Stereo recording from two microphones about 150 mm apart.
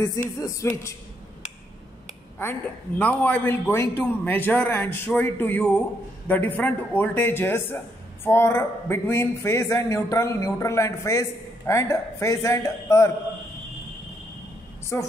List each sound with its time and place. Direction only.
0.0 s speech: 20° left (ahead or behind)
3.0 s a man's voice: 10° left (ahead or behind)
14.9 s a man's voice: 15° left (ahead or behind)